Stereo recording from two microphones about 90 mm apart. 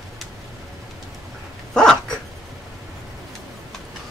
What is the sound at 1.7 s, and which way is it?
Dog, 10° left (ahead or behind).